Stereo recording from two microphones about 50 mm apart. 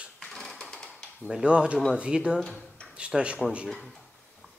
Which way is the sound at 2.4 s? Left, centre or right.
Centre.